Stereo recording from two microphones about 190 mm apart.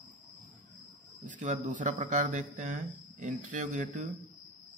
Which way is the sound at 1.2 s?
40° right (ahead or behind).